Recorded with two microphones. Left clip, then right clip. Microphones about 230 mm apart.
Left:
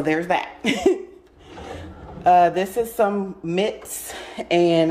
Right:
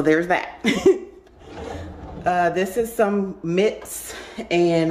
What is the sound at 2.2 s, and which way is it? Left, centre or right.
A woman's voice, centre.